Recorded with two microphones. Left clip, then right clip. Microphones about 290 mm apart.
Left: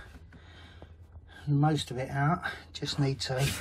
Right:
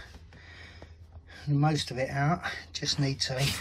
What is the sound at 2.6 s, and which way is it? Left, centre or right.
Speech, left.